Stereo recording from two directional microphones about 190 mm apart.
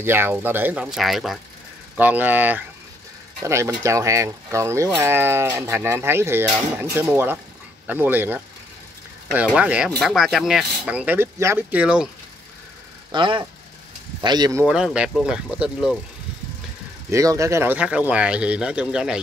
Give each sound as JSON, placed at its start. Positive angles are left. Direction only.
{"t": 0.0, "sound": "speech", "side_deg": -10}
{"t": 13.1, "sound": "speech", "side_deg": -25}
{"t": 14.7, "sound": "speech", "side_deg": -5}
{"t": 17.1, "sound": "speech", "side_deg": -15}